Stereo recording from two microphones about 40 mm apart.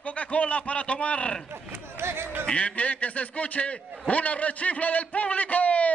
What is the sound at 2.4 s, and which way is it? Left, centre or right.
A man's voice, left.